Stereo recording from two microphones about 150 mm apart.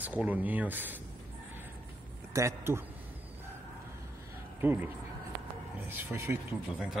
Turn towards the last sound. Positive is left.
turn(degrees=-15)  # may be behind; listen again after turning